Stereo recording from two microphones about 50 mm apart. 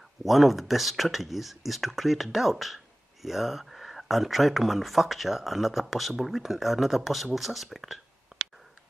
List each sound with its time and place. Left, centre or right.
0.2 s speech: centre